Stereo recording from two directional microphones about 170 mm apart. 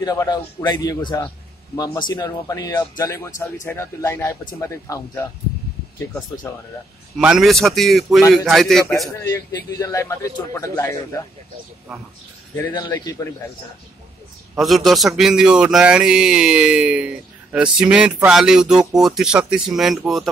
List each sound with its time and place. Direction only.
0.0 s a man's voice: 25° left (ahead or behind)
7.2 s a man's voice: 5° right (ahead or behind)
9.2 s a man's voice: 20° left (ahead or behind)
12.5 s a man's voice: 20° left (ahead or behind)
14.6 s a man's voice: centre (ahead or behind)